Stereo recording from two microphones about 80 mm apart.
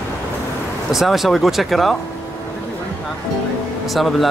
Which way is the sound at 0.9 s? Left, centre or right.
Centre.